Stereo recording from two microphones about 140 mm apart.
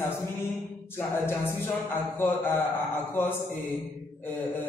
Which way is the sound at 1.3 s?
15° left (ahead or behind).